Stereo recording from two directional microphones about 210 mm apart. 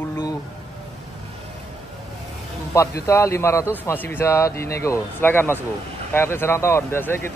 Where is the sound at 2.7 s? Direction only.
15° left (ahead or behind).